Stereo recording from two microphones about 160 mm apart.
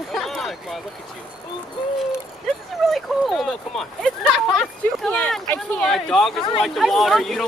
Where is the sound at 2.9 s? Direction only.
Centre (ahead or behind).